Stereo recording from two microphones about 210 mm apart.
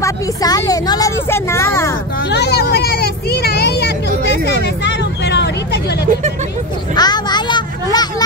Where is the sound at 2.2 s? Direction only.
55° left (ahead or behind).